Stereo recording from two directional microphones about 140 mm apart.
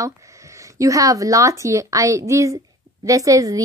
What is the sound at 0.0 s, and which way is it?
A woman's voice, 20° right (ahead or behind).